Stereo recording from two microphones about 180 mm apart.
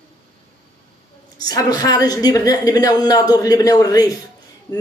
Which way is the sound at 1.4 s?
20° left (ahead or behind).